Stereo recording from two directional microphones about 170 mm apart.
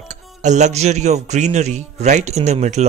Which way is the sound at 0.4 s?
45° right (ahead or behind).